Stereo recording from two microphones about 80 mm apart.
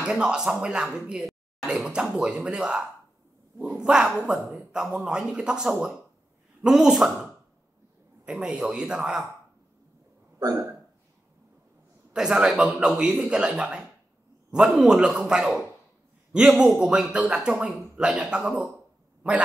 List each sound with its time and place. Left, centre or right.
0.0 s speech: centre
8.3 s speech: centre
12.1 s speech: centre
16.5 s speech: centre